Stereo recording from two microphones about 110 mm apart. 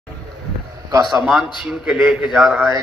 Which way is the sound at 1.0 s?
Centre (ahead or behind).